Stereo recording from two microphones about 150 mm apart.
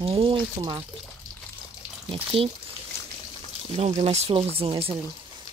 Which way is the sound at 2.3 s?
35° right (ahead or behind).